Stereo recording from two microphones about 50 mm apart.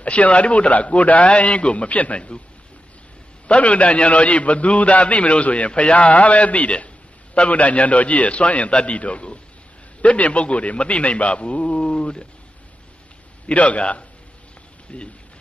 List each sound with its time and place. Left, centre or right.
0.0 s a man's voice: left
3.4 s a man's voice: left
13.5 s a man's voice: left